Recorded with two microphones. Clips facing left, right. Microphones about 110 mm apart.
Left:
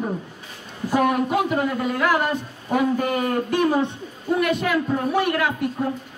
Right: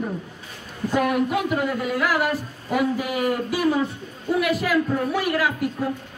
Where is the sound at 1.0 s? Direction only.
40° left (ahead or behind).